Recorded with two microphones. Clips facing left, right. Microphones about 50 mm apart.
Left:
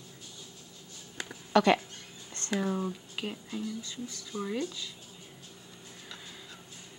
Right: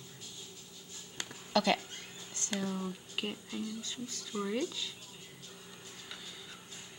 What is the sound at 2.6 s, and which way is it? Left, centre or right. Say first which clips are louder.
Speech: left 6 dB; left.